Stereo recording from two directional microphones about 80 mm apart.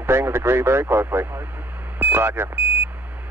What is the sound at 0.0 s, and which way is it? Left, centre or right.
Speech, right.